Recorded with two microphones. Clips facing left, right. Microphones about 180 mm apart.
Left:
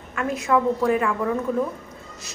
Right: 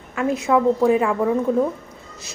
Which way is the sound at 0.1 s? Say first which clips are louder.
Right 3 dB; 25° right (ahead or behind).